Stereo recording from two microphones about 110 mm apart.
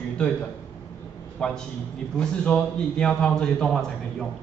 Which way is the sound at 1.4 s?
10° left (ahead or behind).